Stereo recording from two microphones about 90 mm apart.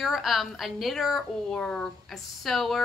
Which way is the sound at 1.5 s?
10° left (ahead or behind).